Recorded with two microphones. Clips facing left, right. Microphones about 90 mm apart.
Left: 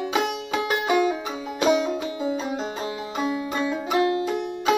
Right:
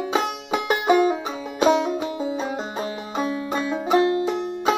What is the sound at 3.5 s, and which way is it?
Music, 30° right (ahead or behind).